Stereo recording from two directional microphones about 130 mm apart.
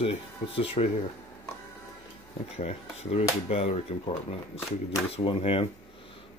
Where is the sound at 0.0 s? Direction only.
45° left (ahead or behind).